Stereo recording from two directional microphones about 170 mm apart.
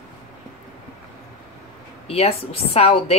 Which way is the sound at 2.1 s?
35° left (ahead or behind).